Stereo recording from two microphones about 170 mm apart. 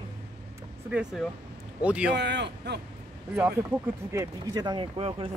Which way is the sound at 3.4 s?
15° right (ahead or behind).